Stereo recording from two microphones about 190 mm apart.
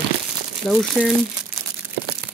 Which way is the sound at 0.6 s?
Centre (ahead or behind).